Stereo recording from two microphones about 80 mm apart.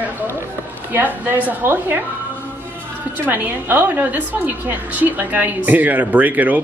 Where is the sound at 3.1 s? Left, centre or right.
Right.